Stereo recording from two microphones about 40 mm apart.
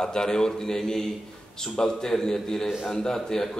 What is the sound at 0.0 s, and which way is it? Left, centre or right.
A man's voice, centre.